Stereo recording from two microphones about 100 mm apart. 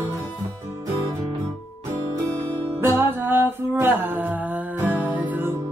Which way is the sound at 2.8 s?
25° right (ahead or behind).